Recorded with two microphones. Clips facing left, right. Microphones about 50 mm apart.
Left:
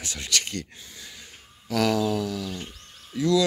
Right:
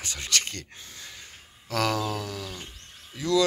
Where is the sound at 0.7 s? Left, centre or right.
Centre.